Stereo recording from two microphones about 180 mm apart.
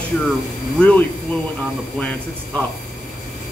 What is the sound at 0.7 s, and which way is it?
A man's voice, 5° left (ahead or behind).